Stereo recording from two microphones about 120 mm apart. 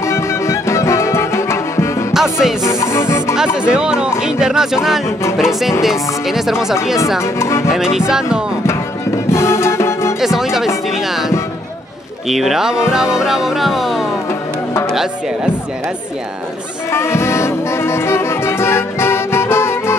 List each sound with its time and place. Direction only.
0.0 s music: 25° left (ahead or behind)
3.5 s speech: 5° right (ahead or behind)
7.3 s music: 25° left (ahead or behind)
7.7 s speech: 5° right (ahead or behind)
9.3 s music: 20° left (ahead or behind)
10.2 s speech: 5° right (ahead or behind)
16.9 s music: 20° left (ahead or behind)